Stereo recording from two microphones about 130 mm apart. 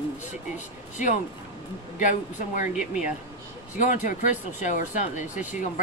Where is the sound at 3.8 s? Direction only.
80° left.